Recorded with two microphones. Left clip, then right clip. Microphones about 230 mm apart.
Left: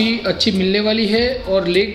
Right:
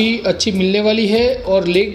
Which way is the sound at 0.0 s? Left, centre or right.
Right.